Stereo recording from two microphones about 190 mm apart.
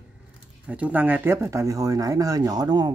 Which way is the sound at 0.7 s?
5° right (ahead or behind).